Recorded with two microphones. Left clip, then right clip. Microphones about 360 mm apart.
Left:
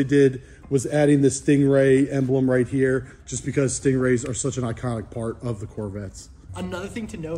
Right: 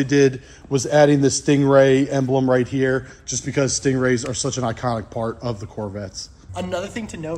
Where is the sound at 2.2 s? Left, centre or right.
Right.